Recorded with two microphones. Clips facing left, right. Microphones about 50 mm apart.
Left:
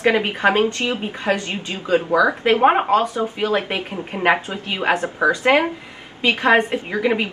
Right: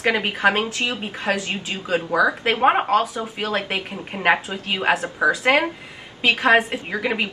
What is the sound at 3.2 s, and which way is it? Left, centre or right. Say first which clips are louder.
Speech: left 4 dB; centre.